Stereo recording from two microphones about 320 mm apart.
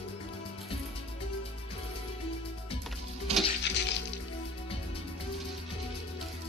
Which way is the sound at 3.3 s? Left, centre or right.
Centre.